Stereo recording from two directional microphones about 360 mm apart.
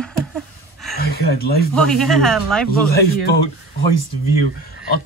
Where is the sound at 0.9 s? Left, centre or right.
Left.